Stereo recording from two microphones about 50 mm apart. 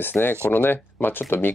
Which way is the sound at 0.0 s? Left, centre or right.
Left.